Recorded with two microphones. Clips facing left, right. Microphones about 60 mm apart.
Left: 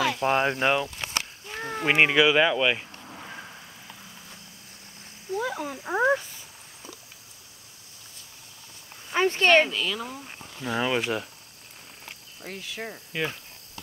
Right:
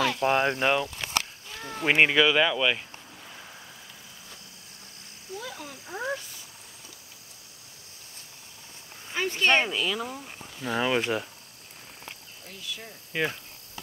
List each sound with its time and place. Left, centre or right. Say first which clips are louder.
0.0 s speech: even; centre
1.5 s a sound: left 4 dB; left
1.9 s speech: left 1 dB; centre
5.3 s a sound: left 9 dB; left
9.1 s speech: left 4 dB; left
9.5 s speech: left 2 dB; centre
12.4 s speech: left 6 dB; left
13.1 s speech: right 1 dB; centre